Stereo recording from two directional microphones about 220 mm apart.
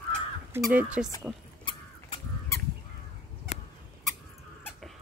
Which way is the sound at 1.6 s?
20° left (ahead or behind).